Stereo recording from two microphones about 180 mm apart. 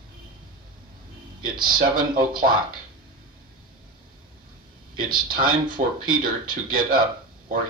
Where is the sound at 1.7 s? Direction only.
50° right (ahead or behind).